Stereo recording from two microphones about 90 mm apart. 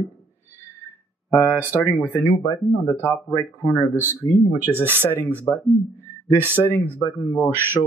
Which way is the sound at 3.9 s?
25° right (ahead or behind).